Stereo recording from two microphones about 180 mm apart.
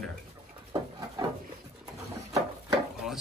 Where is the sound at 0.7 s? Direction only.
25° right (ahead or behind).